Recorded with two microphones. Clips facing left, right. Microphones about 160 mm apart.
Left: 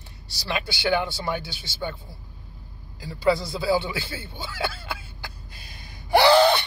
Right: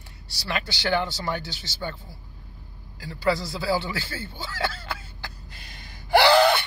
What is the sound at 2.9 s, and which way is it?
Speech, 20° left (ahead or behind).